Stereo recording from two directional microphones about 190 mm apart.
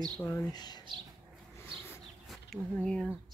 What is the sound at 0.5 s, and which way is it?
Speech, 20° left (ahead or behind).